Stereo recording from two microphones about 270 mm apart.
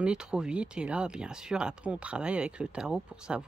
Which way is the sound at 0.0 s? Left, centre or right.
Centre.